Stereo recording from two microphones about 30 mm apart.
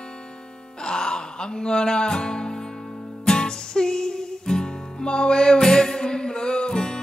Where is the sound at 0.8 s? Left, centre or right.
Left.